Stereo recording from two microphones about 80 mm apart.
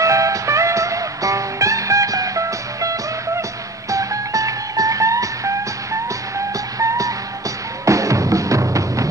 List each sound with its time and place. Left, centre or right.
0.0 s music: right